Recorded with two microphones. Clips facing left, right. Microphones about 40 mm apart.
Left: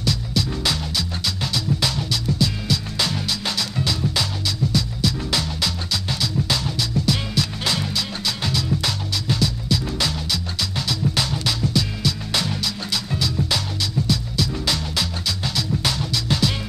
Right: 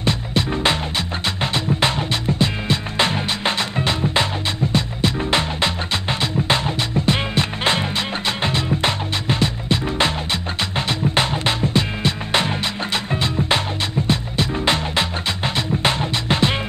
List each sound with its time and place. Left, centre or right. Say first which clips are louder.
0.0 s music: right 3 dB; right